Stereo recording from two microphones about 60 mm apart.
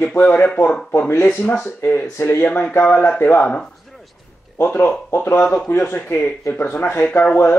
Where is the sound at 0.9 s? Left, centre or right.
Left.